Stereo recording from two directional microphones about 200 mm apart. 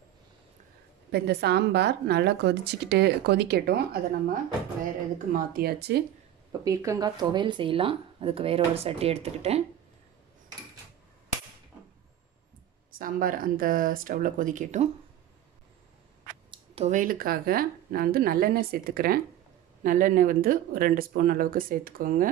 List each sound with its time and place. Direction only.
1.1 s speech: 55° right (ahead or behind)
5.3 s speech: 50° right (ahead or behind)
6.6 s speech: 15° right (ahead or behind); by 9.6 s 30° right (ahead or behind)
12.9 s speech: 45° right (ahead or behind)
16.4 s speech: 30° right (ahead or behind)